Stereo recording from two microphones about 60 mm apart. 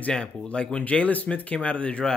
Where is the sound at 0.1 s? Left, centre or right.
Centre.